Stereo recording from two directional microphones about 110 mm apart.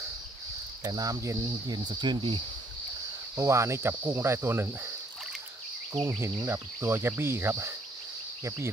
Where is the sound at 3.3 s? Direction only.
25° right (ahead or behind).